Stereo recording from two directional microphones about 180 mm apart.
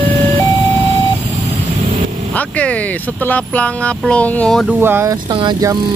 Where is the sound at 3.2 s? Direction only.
10° left (ahead or behind).